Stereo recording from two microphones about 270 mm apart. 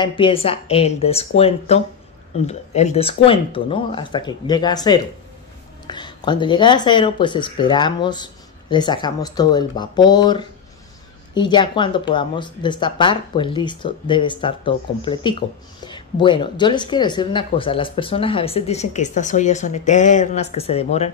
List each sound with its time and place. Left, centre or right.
0.0 s speech: centre